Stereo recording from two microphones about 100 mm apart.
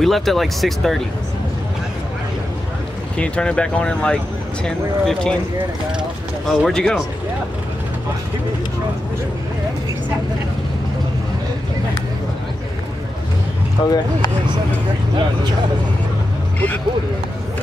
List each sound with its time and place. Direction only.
0.0 s speech: centre (ahead or behind)
3.2 s speech: 10° left (ahead or behind)
6.4 s speech: 5° left (ahead or behind)
13.8 s speech: 40° left (ahead or behind)